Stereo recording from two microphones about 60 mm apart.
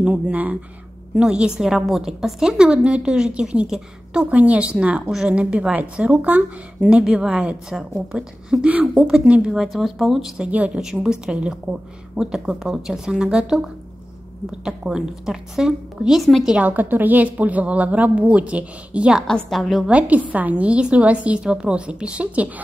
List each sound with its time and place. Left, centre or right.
0.0 s a woman's voice: right
1.1 s a woman's voice: centre
4.3 s a woman's voice: right
8.7 s a woman's voice: right
9.5 s speech: centre
10.4 s a woman's voice: right
10.8 s a woman's voice: centre
16.2 s speech: centre
16.5 s a woman's voice: right
19.2 s speech: centre
19.9 s a woman's voice: right